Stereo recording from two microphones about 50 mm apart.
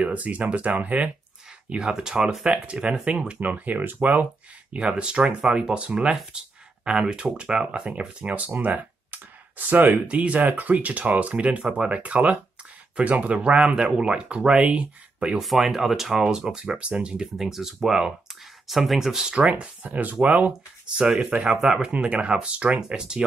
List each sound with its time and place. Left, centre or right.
0.0 s speech: right
1.7 s speech: centre
2.5 s speech: right
3.4 s speech: right
4.7 s speech: right
10.0 s speech: right
15.4 s speech: centre; by 17.3 s right
17.4 s speech: centre
19.3 s speech: right
21.5 s speech: centre